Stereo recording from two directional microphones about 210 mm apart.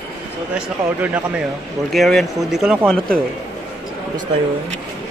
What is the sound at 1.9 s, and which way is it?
Speech, centre (ahead or behind).